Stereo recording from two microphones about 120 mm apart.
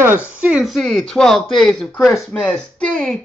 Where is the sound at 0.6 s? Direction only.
Centre (ahead or behind).